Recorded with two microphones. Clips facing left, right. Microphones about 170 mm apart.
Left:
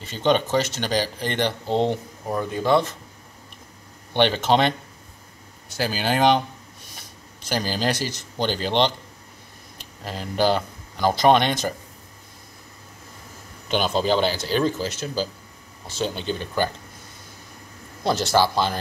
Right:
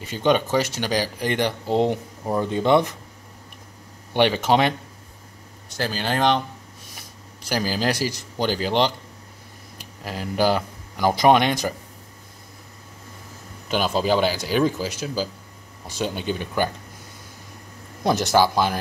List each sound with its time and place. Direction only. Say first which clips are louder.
0.0 s speech: right 1 dB; 10° right (ahead or behind)
2.2 s speech: right 2 dB; 25° right (ahead or behind)
4.1 s speech: right 1 dB; 10° right (ahead or behind)
5.7 s speech: left 1 dB; 5° left (ahead or behind)
7.4 s a man's voice: right 1 dB; 5° right (ahead or behind)
13.7 s speech: even; 5° right (ahead or behind)
18.0 s speech: right 2 dB; 15° right (ahead or behind)